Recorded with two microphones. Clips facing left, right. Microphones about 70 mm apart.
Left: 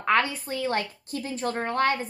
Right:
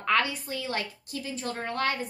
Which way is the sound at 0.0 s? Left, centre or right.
Left.